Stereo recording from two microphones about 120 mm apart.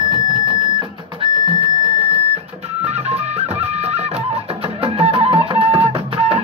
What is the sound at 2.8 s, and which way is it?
Music, 60° right (ahead or behind).